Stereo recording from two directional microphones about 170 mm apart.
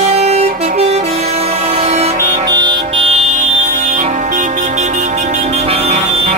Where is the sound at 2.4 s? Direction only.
25° right (ahead or behind).